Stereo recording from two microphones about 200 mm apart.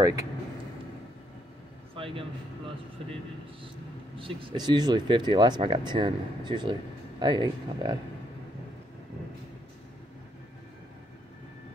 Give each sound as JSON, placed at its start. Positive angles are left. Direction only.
{"t": 0.0, "sound": "speech", "side_deg": -15}
{"t": 2.0, "sound": "a sound", "side_deg": -25}
{"t": 4.2, "sound": "speech", "side_deg": -25}